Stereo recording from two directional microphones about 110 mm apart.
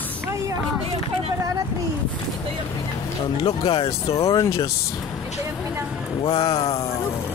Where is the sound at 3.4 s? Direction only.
55° left (ahead or behind).